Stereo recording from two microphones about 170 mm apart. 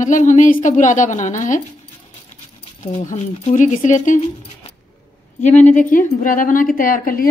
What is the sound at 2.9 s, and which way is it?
A woman's voice, 40° left (ahead or behind).